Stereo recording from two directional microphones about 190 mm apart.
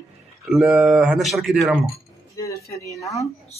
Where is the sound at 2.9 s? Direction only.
15° left (ahead or behind).